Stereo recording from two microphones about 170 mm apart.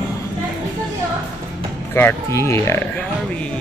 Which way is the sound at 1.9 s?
15° left (ahead or behind).